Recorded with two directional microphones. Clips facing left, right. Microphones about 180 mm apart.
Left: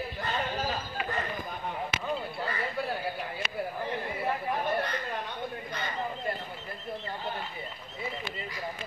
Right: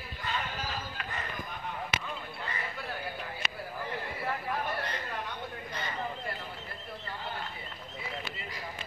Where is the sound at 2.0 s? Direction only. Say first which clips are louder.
Left 7 dB; 35° left (ahead or behind).